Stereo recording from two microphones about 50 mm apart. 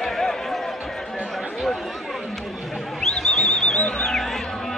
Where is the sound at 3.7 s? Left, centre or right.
Centre.